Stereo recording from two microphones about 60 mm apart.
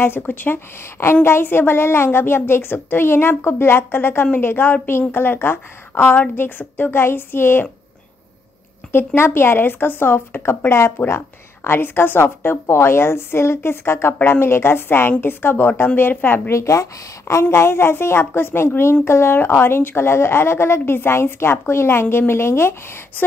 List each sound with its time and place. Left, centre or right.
0.0 s a woman's voice: left
8.9 s a woman's voice: left
16.5 s a woman's voice: left